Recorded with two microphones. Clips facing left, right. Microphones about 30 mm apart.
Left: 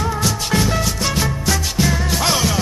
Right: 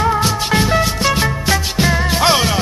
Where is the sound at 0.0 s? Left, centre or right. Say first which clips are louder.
Right 5 dB; right.